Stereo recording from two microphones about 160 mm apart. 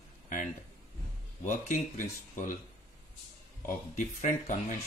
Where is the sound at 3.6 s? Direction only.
55° left (ahead or behind).